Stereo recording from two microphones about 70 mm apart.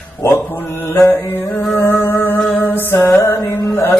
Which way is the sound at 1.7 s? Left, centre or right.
Left.